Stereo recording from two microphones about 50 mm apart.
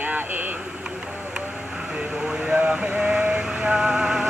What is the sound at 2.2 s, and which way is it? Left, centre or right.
Vehicle, centre.